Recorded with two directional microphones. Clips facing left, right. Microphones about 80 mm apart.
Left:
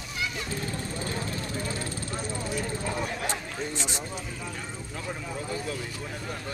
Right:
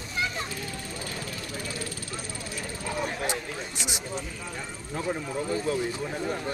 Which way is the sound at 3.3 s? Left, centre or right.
Centre.